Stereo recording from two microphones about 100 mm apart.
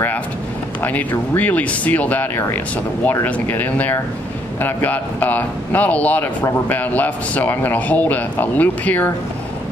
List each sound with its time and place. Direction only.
1.1 s a man's voice: 15° left (ahead or behind)